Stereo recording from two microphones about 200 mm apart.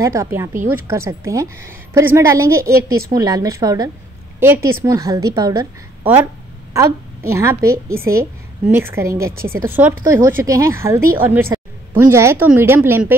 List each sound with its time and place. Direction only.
0.0 s a woman's voice: 15° right (ahead or behind)
7.7 s a woman's voice: 45° right (ahead or behind)
8.7 s a woman's voice: 10° right (ahead or behind)